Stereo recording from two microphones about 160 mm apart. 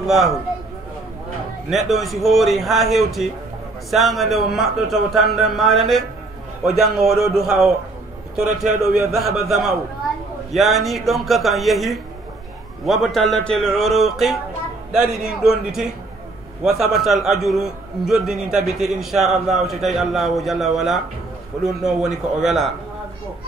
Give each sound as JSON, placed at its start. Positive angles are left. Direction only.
{"t": 0.0, "sound": "a man's voice", "side_deg": 0}
{"t": 1.7, "sound": "a man's voice", "side_deg": 0}
{"t": 8.9, "sound": "a man's voice", "side_deg": 0}
{"t": 16.6, "sound": "a man's voice", "side_deg": 0}